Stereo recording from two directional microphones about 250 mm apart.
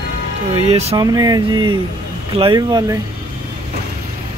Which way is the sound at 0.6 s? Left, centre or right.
Right.